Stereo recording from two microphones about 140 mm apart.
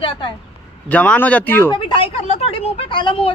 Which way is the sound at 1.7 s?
35° left (ahead or behind).